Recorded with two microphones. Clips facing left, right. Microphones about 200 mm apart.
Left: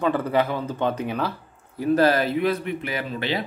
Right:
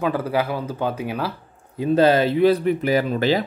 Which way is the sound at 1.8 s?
25° right (ahead or behind).